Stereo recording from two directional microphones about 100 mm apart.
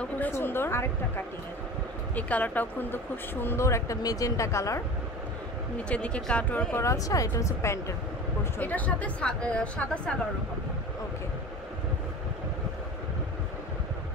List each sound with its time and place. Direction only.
0.3 s speech: 20° left (ahead or behind)
5.9 s speech: 10° left (ahead or behind)
6.8 s speech: 30° left (ahead or behind)
8.5 s speech: 20° left (ahead or behind)